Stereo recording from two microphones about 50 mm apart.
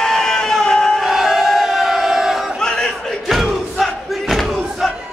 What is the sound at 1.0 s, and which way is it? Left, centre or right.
Crowd, centre.